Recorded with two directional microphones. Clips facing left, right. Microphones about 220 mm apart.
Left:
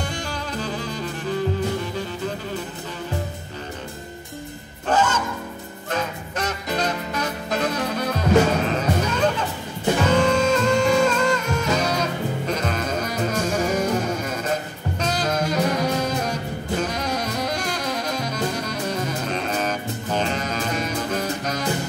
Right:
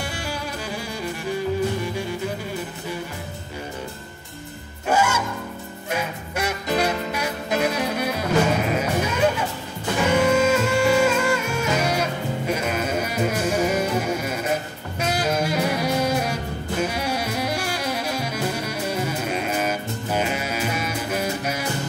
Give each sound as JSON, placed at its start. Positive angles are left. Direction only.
{"t": 0.0, "sound": "music", "side_deg": -10}
{"t": 4.8, "sound": "music", "side_deg": -10}